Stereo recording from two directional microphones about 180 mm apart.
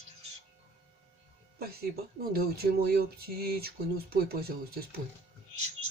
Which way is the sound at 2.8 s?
60° right (ahead or behind).